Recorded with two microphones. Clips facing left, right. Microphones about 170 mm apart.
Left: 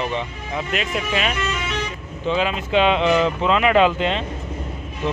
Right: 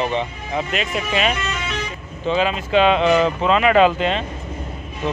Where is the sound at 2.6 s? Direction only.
15° left (ahead or behind).